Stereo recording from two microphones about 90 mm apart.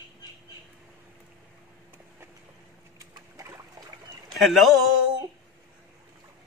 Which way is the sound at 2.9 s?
35° right (ahead or behind).